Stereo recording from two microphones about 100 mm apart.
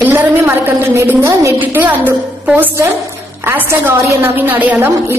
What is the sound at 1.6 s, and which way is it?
A woman's voice, 15° right (ahead or behind).